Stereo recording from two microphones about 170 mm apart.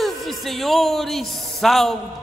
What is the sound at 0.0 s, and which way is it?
A man's voice, centre (ahead or behind).